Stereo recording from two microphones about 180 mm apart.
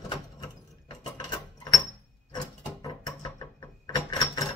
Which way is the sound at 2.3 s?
20° left (ahead or behind).